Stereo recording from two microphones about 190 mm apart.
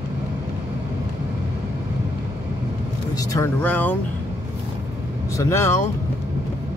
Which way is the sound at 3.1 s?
20° left (ahead or behind).